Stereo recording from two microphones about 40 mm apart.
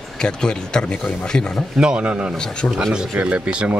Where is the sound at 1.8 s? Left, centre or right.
Right.